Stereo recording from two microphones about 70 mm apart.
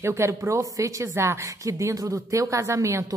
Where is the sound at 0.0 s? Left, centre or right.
Right.